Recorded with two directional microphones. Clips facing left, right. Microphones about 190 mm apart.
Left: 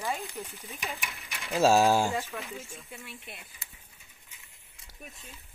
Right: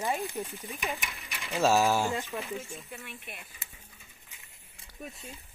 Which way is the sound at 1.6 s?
15° left (ahead or behind).